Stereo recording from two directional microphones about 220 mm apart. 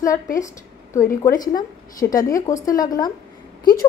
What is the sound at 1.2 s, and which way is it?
A woman's voice, 15° left (ahead or behind).